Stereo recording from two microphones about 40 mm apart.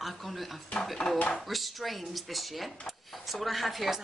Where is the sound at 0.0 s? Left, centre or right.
Centre.